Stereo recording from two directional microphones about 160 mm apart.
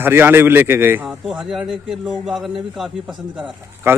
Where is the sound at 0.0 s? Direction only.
15° right (ahead or behind).